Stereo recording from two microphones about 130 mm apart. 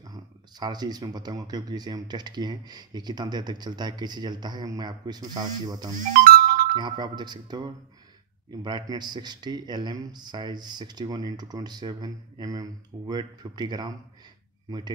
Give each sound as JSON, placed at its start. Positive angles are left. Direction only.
{"t": 0.0, "sound": "speech", "side_deg": -30}
{"t": 5.9, "sound": "music", "side_deg": -90}
{"t": 6.7, "sound": "speech", "side_deg": -35}